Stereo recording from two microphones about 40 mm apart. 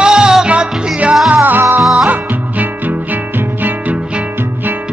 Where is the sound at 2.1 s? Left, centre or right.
Right.